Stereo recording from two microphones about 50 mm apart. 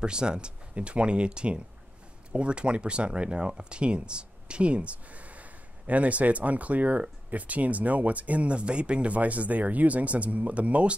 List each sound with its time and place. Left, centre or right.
0.0 s speech: centre